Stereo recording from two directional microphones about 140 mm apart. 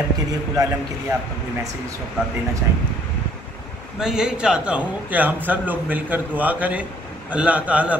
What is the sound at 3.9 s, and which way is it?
A man's voice, 5° right (ahead or behind).